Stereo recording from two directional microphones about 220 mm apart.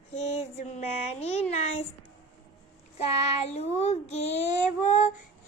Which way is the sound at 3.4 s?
30° left (ahead or behind).